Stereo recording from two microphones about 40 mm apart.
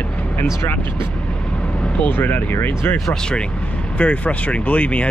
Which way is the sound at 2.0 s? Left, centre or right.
Left.